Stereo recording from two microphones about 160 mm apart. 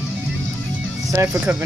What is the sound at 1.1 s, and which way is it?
Speech, 15° right (ahead or behind).